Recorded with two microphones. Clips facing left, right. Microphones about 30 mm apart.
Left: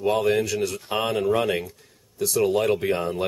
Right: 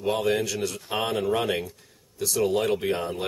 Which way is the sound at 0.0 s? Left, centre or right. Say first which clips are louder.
Left 3 dB; centre.